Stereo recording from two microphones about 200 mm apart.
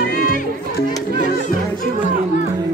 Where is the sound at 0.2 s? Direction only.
45° left (ahead or behind).